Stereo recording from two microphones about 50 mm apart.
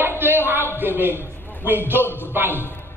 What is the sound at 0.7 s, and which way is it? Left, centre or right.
Speech, right.